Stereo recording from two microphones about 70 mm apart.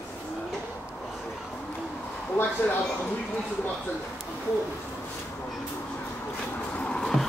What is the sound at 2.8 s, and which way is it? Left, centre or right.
Speech, centre.